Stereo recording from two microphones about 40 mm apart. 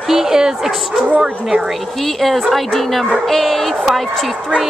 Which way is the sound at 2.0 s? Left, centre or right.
Centre.